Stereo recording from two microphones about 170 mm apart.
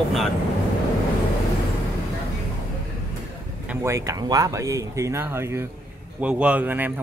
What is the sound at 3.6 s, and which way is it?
Speech, 15° right (ahead or behind).